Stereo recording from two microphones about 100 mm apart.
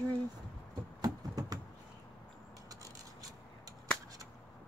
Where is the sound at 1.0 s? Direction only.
40° right (ahead or behind).